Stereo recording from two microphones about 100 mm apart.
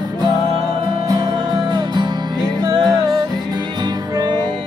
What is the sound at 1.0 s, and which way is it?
Music, 40° right (ahead or behind).